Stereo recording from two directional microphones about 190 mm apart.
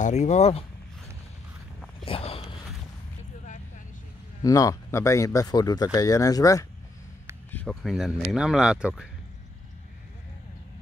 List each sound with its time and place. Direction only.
0.0 s speech: 40° left (ahead or behind)
2.0 s a sound: 30° left (ahead or behind)
4.4 s speech: 20° left (ahead or behind)
7.5 s speech: 5° left (ahead or behind)